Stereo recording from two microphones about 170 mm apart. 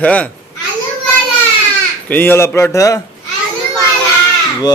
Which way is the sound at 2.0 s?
10° left (ahead or behind).